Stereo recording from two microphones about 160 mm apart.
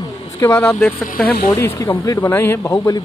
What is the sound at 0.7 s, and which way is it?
Speech, 5° left (ahead or behind).